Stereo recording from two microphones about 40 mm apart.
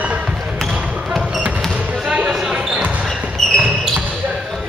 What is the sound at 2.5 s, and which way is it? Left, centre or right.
Basketball bounce, centre.